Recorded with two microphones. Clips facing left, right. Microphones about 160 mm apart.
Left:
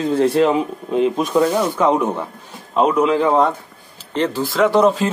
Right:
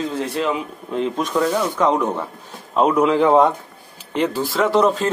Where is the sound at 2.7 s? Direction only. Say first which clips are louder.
Left 1 dB; 5° right (ahead or behind).